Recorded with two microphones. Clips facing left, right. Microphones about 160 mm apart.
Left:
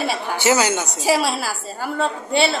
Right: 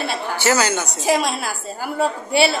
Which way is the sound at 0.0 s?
10° left (ahead or behind).